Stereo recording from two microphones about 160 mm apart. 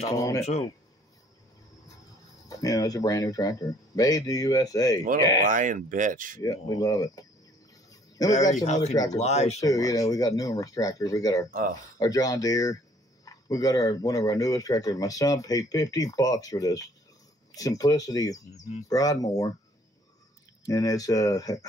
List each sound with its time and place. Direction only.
0.0 s speech: 20° left (ahead or behind)
2.5 s speech: 20° left (ahead or behind)
5.5 s speech: 55° right (ahead or behind)
6.4 s speech: 25° left (ahead or behind)
7.7 s a sound: 20° left (ahead or behind)
8.5 s speech: 45° left (ahead or behind)
8.9 s speech: 20° left (ahead or behind)
9.2 s speech: 45° left (ahead or behind)
9.6 s speech: 20° left (ahead or behind)
20.6 s speech: 20° left (ahead or behind)